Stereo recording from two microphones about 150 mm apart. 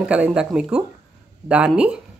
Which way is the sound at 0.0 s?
5° right (ahead or behind).